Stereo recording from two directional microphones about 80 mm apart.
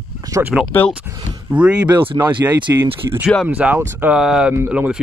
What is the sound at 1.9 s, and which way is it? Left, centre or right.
Speech, right.